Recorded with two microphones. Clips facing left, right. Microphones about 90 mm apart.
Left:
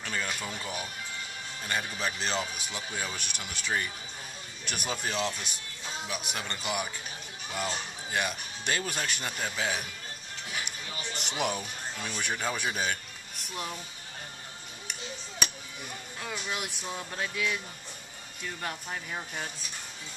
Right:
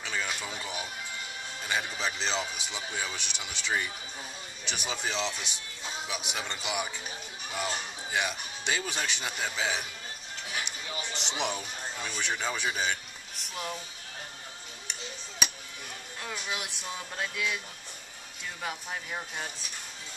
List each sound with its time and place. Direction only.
0.0 s speech: 5° right (ahead or behind)
11.1 s speech: 5° left (ahead or behind)
16.2 s speech: centre (ahead or behind)